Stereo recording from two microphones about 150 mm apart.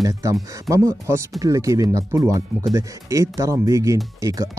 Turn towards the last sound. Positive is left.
turn(degrees=-20)  # may be behind; listen again after turning